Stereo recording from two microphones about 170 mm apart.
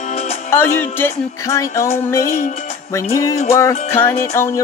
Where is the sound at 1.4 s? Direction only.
15° left (ahead or behind).